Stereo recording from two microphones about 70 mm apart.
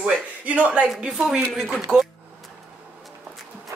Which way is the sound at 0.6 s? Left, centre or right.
Centre.